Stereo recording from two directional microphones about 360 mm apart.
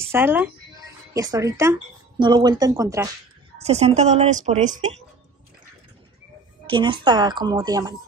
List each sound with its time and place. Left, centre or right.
0.0 s speech: centre
6.7 s speech: centre